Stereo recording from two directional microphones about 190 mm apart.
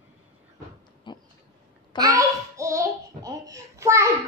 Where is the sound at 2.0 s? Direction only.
15° right (ahead or behind).